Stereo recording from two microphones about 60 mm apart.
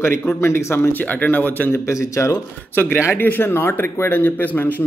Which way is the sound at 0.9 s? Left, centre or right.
Left.